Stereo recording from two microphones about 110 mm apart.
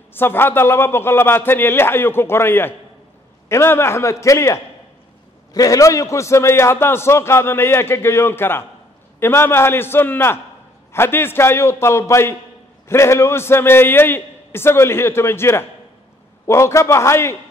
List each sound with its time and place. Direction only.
0.1 s a man's voice: 20° left (ahead or behind)